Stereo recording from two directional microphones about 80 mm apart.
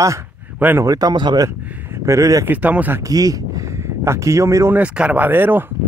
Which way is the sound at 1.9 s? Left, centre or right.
Right.